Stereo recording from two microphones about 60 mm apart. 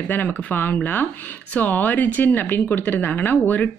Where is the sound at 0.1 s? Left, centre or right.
Left.